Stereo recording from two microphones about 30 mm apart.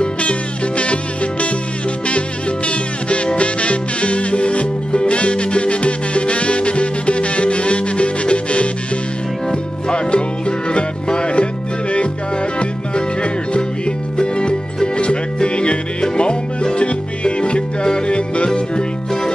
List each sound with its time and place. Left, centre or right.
0.0 s music: left
12.5 s music: left